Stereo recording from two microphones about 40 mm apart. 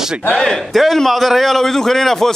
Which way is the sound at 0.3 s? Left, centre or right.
Centre.